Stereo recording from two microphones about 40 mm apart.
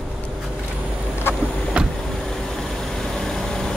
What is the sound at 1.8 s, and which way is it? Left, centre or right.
Vehicle, right.